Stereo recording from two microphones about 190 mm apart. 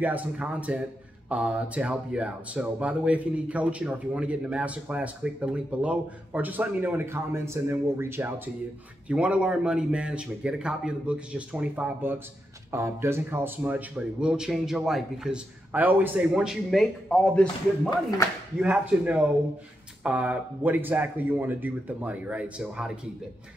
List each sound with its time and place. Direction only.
0.0 s speech: 10° right (ahead or behind)
17.8 s speech: 20° left (ahead or behind)
18.6 s speech: 5° right (ahead or behind)